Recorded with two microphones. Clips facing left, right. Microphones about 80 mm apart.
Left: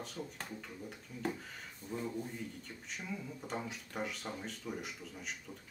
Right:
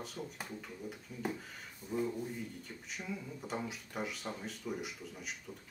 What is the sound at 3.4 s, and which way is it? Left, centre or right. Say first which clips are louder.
Speech: right 1 dB; centre.